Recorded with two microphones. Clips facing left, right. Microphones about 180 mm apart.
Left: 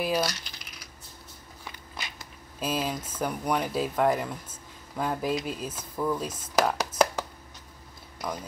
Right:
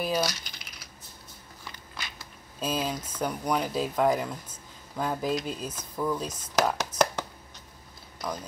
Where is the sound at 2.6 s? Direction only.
5° left (ahead or behind).